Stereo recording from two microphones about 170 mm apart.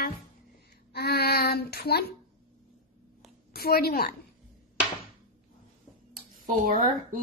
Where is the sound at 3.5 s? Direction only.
65° left (ahead or behind).